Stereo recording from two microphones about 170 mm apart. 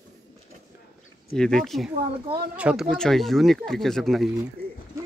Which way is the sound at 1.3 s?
5° left (ahead or behind).